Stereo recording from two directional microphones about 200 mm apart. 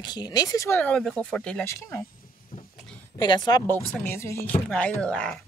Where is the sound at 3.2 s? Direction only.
20° left (ahead or behind).